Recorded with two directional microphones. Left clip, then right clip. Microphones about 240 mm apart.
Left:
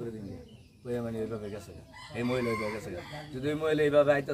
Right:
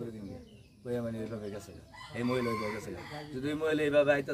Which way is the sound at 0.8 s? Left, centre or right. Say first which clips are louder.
Left 2 dB; centre.